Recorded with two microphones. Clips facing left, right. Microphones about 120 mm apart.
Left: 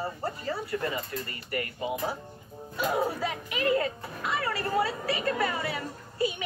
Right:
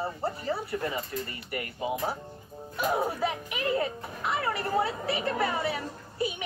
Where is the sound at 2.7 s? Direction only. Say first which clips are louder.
Even; 15° right (ahead or behind).